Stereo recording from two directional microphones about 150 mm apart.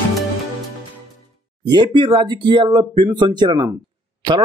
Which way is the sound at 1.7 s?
30° right (ahead or behind).